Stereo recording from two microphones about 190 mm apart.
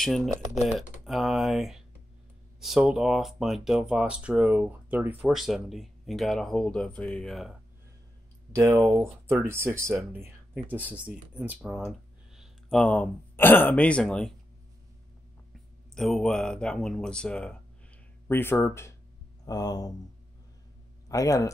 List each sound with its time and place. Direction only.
0.0 s speech: centre (ahead or behind)
8.5 s speech: 15° right (ahead or behind); by 14.3 s 5° left (ahead or behind)
15.9 s speech: centre (ahead or behind); by 19.9 s 20° left (ahead or behind)
21.1 s speech: 15° left (ahead or behind)